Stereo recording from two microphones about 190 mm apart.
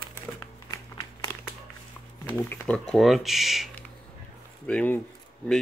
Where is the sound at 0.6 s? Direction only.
15° left (ahead or behind).